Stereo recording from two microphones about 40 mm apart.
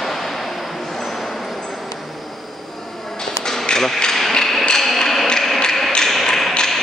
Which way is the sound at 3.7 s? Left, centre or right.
Centre.